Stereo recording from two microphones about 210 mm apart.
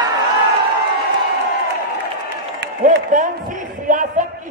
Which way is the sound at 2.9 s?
40° right (ahead or behind).